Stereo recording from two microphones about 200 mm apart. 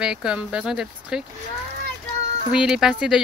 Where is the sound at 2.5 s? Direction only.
5° right (ahead or behind).